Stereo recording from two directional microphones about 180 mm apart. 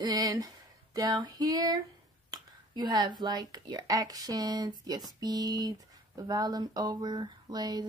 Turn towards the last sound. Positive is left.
turn(degrees=-20)  # may be behind; listen again after turning